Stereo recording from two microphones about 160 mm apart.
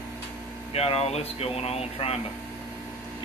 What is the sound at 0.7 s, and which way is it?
Speech, 40° left (ahead or behind).